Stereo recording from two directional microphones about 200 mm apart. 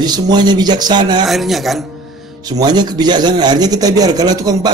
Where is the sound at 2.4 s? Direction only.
20° right (ahead or behind).